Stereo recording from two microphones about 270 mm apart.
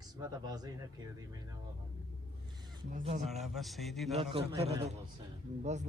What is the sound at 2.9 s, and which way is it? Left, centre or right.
Speech, right.